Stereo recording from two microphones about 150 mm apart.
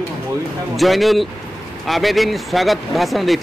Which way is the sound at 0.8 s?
Centre (ahead or behind).